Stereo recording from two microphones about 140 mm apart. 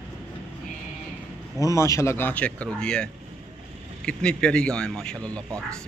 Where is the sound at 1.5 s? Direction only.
20° left (ahead or behind).